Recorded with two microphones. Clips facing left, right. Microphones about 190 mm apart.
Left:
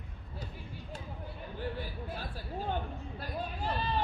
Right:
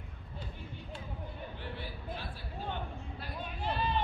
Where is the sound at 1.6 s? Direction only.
40° left (ahead or behind).